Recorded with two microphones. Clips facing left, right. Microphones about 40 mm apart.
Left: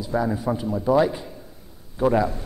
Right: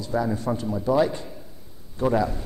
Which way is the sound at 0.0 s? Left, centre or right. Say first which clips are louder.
Left 2 dB; centre.